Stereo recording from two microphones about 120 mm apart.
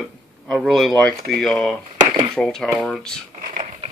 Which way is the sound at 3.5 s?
65° right (ahead or behind).